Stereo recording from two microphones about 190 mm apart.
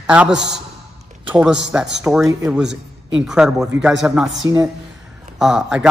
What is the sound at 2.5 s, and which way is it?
A man's voice, 5° right (ahead or behind).